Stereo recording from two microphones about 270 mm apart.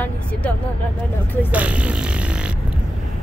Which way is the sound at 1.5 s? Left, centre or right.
Centre.